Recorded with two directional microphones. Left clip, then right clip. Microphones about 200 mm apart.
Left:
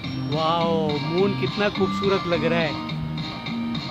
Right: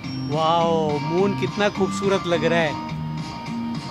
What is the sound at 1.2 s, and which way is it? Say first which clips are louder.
Speech: right 1 dB; 25° right (ahead or behind).